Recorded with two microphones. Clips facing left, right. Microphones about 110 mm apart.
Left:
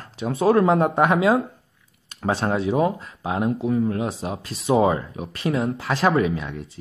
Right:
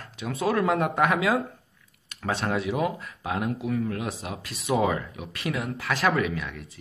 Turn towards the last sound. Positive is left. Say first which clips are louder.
# left 6 dB
turn(degrees=30)  # may be behind; listen again after turning